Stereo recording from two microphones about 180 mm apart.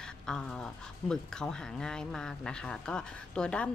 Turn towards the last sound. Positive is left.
turn(degrees=5)  # may be behind; listen again after turning